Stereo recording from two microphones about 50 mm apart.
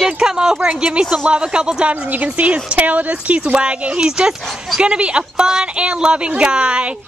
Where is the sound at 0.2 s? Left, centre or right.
Centre.